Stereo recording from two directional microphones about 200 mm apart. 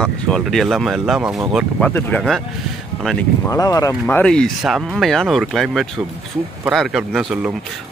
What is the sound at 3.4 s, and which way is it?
Speech, 15° left (ahead or behind).